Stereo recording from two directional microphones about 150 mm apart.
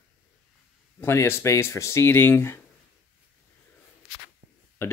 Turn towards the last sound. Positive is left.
turn(degrees=15)  # may be behind; listen again after turning